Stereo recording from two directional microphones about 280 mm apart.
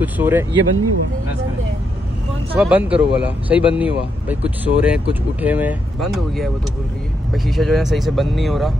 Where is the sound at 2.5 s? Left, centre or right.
Centre.